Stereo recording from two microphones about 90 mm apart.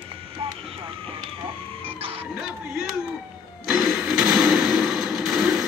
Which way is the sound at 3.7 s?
5° right (ahead or behind).